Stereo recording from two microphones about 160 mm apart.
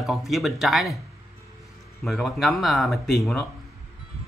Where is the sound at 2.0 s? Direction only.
Centre (ahead or behind).